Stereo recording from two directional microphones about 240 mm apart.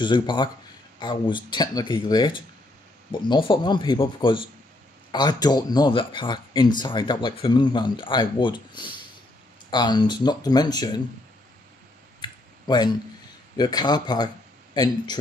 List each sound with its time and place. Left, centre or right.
0.0 s speech: centre
12.2 s clicking: centre
13.6 s speech: centre